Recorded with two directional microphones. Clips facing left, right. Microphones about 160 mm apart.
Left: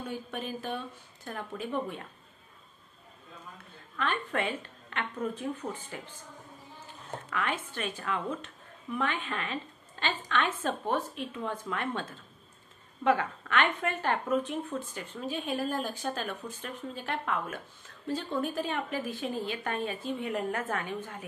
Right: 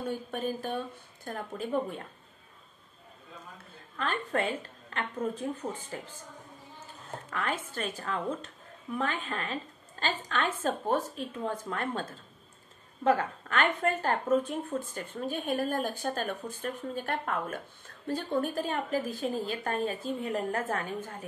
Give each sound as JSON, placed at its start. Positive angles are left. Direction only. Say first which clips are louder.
{"t": 0.3, "sound": "a woman's voice", "louder": "right 3 dB", "side_deg": -45}
{"t": 3.9, "sound": "a woman's voice", "louder": "right 1 dB", "side_deg": -35}
{"t": 5.6, "sound": "speech", "louder": "right 1 dB", "side_deg": -15}
{"t": 7.2, "sound": "a woman's voice", "louder": "even", "side_deg": -35}